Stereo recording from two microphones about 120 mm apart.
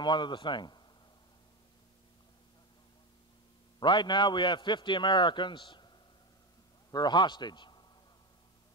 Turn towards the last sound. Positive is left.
turn(degrees=40)  # may be behind; listen again after turning